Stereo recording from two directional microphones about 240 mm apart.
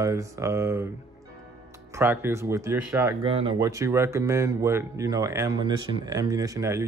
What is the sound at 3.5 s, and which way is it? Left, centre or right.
Speech, centre.